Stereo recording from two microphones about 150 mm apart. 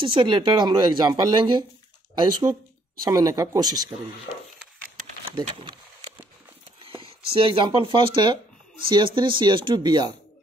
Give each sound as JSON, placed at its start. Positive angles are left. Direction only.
{"t": 0.0, "sound": "speech", "side_deg": -35}
{"t": 3.1, "sound": "speech", "side_deg": -25}
{"t": 5.3, "sound": "a sound", "side_deg": -35}
{"t": 7.3, "sound": "speech", "side_deg": -35}